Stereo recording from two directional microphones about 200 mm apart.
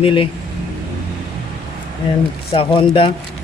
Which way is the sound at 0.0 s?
25° left (ahead or behind).